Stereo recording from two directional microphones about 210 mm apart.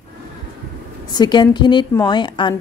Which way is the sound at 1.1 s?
20° left (ahead or behind).